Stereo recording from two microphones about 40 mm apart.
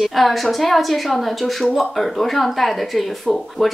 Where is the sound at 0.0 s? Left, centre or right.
Centre.